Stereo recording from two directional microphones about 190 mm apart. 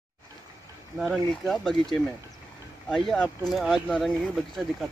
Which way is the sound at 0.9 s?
Centre (ahead or behind).